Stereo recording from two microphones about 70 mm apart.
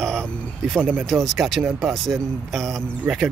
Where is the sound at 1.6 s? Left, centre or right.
Right.